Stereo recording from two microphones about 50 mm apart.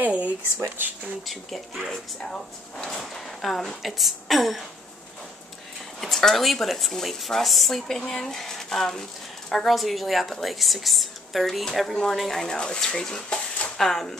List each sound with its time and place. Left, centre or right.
0.0 s a sound: right
1.2 s speech: centre
1.9 s speech: centre
5.9 s speech: centre
9.7 s speech: centre
13.7 s speech: centre